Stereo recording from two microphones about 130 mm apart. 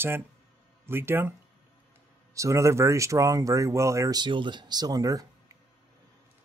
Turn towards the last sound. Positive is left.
turn(degrees=-30)  # may be behind; listen again after turning